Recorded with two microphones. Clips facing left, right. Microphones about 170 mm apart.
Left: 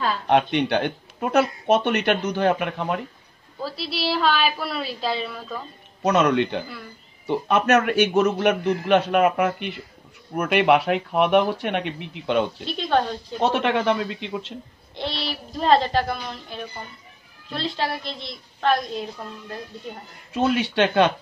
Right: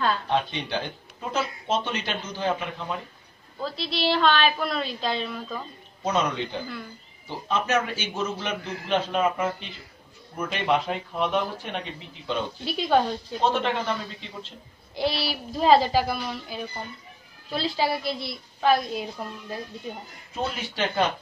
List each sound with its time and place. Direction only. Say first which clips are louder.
0.3 s speech: left 7 dB; 65° left (ahead or behind)
3.6 s a woman's voice: even; 5° left (ahead or behind)
6.0 s speech: left 7 dB; 70° left (ahead or behind)
10.3 s speech: left 7 dB; 80° left
12.6 s a woman's voice: even; 5° right (ahead or behind)
13.4 s speech: left 4 dB; 70° left (ahead or behind)
15.0 s a woman's voice: right 3 dB; 5° right (ahead or behind)
20.3 s speech: left 9 dB; 75° left (ahead or behind)